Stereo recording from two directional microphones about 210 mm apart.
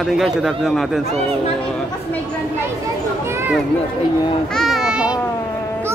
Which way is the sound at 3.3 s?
10° right (ahead or behind).